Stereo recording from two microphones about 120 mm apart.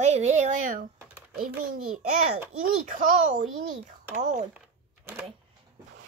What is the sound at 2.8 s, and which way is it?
Speech, 90° right.